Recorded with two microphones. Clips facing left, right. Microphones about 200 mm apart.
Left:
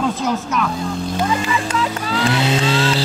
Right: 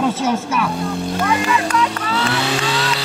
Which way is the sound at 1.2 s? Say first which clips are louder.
Right 4 dB; 75° right (ahead or behind).